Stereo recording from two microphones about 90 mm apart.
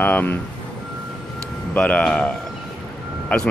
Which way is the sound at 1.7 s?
15° left (ahead or behind).